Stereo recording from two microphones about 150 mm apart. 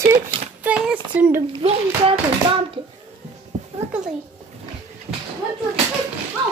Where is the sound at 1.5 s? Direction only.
35° right (ahead or behind).